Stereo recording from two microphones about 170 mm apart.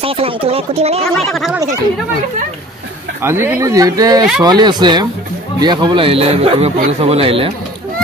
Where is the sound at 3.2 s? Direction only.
15° right (ahead or behind).